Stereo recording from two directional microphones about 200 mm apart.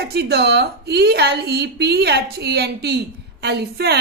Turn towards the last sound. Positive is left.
turn(degrees=-55)  # may be behind; listen again after turning